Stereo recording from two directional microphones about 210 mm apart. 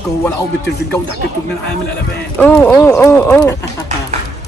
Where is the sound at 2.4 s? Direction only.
10° left (ahead or behind).